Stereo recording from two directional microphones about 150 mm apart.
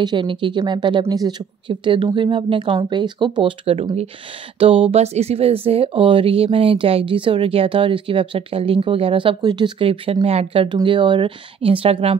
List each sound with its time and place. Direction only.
0.0 s speech: 30° right (ahead or behind)